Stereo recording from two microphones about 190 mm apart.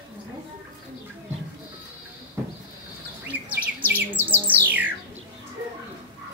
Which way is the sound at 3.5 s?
10° right (ahead or behind).